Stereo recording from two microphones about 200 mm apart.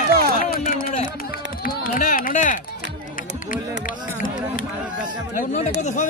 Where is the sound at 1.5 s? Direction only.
45° left (ahead or behind).